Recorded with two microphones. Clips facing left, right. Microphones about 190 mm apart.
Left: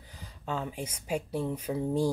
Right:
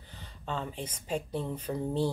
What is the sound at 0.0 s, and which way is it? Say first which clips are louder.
Speech: left 1 dB; 10° left (ahead or behind).